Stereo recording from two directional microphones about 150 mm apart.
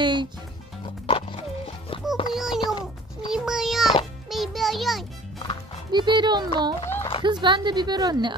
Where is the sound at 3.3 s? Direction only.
5° right (ahead or behind).